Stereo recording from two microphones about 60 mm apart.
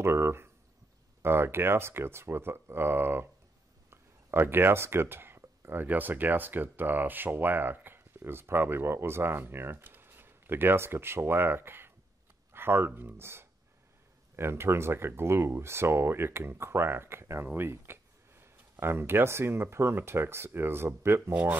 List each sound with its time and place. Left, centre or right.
0.0 s speech: right
21.3 s speech: right